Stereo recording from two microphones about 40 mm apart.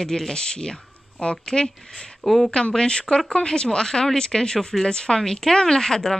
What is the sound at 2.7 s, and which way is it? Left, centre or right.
A woman's voice, left.